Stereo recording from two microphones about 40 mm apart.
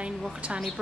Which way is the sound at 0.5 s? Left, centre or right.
Centre.